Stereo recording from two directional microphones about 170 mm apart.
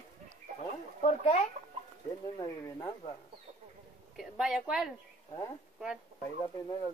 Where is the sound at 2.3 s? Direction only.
20° left (ahead or behind).